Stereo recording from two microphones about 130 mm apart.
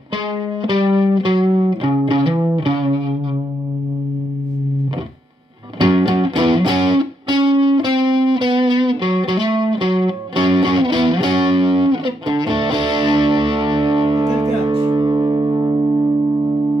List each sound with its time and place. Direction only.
0.6 s music: 35° right (ahead or behind)
5.8 s music: 40° right (ahead or behind)